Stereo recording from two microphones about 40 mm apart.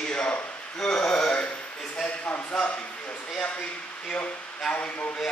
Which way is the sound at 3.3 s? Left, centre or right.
Left.